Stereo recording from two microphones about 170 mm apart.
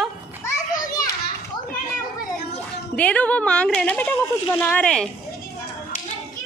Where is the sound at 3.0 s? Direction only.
10° left (ahead or behind).